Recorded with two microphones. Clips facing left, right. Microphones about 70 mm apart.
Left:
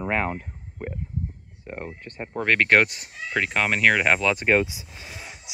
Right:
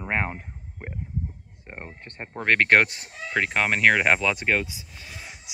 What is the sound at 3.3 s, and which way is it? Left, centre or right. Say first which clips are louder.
Speech: even; right.